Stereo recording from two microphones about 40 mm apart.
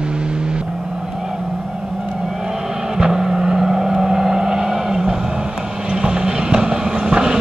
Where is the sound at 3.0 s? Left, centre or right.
Centre.